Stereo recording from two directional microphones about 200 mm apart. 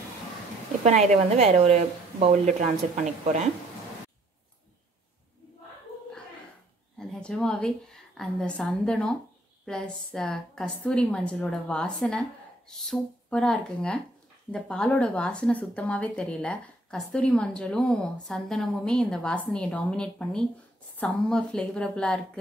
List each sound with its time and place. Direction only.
0.8 s speech: 35° right (ahead or behind)
7.0 s a woman's voice: 5° left (ahead or behind)